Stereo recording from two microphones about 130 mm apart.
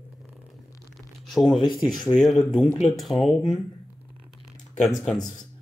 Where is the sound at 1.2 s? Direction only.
Centre (ahead or behind).